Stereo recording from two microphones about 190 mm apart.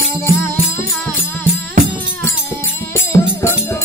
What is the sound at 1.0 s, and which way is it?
Music, 10° left (ahead or behind).